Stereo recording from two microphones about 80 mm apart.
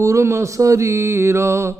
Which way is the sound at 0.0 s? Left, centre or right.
Right.